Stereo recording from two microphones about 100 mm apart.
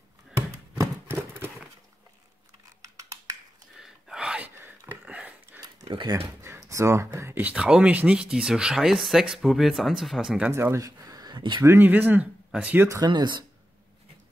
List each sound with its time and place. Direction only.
0.3 s a sound: 30° right (ahead or behind)
3.7 s gasp: 5° right (ahead or behind)
4.6 s a sound: 20° right (ahead or behind)
6.1 s speech: 25° right (ahead or behind); by 10.5 s 5° right (ahead or behind)
10.5 s speech: 25° right (ahead or behind); by 11.6 s 50° right (ahead or behind)
11.6 s speech: 20° right (ahead or behind)
13.0 s speech: 50° right (ahead or behind)